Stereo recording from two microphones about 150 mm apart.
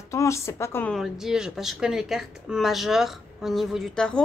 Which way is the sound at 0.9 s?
Centre (ahead or behind).